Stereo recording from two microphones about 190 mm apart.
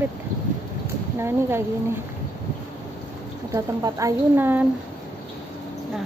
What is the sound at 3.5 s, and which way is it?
A woman's voice, 15° right (ahead or behind).